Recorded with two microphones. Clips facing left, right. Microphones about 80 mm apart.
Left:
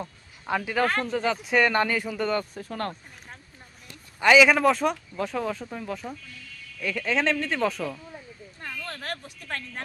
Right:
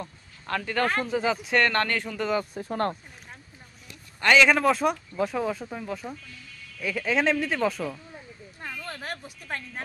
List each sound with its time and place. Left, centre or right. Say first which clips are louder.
0.0 s speech: left 2 dB; centre
2.7 s speech: right 5 dB; right
4.2 s speech: left 2 dB; centre
8.5 s a sound: even; centre